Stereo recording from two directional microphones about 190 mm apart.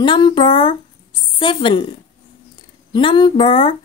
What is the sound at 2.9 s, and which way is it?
Speech, 25° left (ahead or behind).